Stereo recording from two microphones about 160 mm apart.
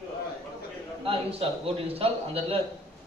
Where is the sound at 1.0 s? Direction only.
35° right (ahead or behind).